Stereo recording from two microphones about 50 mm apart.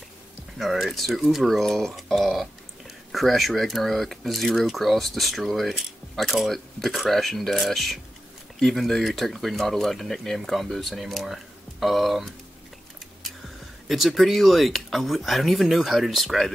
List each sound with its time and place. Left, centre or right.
0.6 s speech: centre
13.8 s speech: centre